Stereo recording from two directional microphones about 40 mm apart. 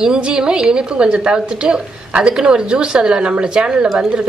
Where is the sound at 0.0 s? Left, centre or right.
Centre.